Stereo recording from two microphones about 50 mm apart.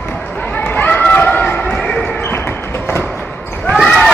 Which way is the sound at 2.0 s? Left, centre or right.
Left.